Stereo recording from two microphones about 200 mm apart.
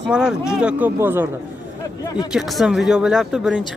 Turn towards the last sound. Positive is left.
turn(degrees=0)  # may be behind; listen again after turning